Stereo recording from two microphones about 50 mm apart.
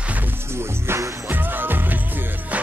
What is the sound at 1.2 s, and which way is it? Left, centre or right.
Music, right.